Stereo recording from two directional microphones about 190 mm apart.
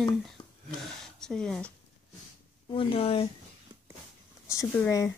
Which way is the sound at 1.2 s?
5° left (ahead or behind).